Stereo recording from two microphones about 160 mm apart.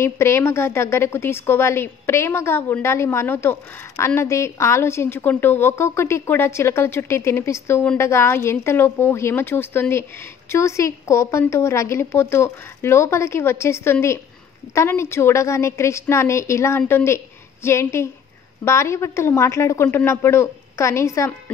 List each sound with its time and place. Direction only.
0.0 s a woman's voice: 15° left (ahead or behind)